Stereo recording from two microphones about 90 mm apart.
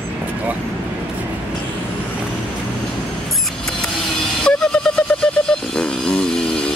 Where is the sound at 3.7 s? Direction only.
5° left (ahead or behind).